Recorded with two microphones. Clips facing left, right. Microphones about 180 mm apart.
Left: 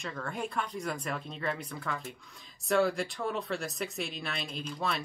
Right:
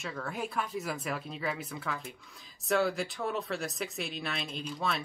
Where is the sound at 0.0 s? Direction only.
5° right (ahead or behind).